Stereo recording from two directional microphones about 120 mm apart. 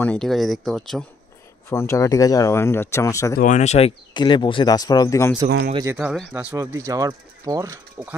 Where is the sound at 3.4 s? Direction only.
80° left; by 3.9 s 65° left (ahead or behind).